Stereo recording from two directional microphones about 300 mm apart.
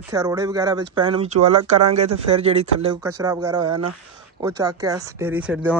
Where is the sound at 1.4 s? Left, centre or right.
Right.